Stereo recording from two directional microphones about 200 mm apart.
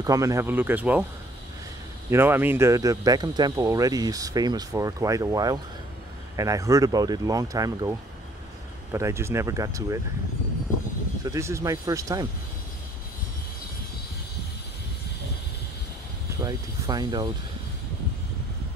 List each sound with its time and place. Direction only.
0.0 s speech: 15° right (ahead or behind)
2.0 s speech: 10° right (ahead or behind)
8.9 s speech: 15° right (ahead or behind)
11.2 s speech: 15° right (ahead or behind)
16.3 s speech: 15° right (ahead or behind)